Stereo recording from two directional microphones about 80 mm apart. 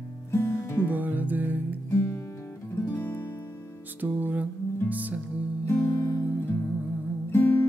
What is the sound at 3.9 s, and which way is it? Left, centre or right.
Music, right.